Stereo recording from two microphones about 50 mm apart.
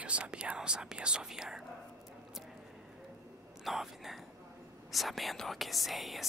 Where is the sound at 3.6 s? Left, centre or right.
Centre.